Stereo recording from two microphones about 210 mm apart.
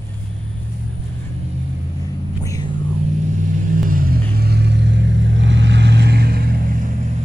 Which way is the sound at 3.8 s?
40° right (ahead or behind).